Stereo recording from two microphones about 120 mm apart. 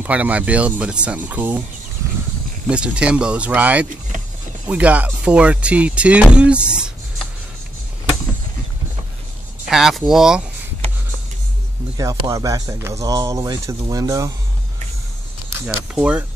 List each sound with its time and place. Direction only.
0.0 s speech: 10° right (ahead or behind)
2.7 s speech: 10° right (ahead or behind)
9.7 s speech: 5° right (ahead or behind)
12.0 s speech: 25° right (ahead or behind)
16.0 s speech: 10° right (ahead or behind)